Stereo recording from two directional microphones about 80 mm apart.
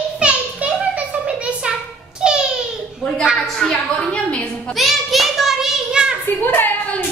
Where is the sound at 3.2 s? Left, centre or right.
Centre.